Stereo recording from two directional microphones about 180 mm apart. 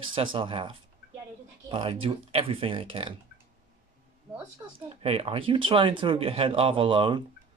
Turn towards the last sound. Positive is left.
turn(degrees=-25)  # may be behind; listen again after turning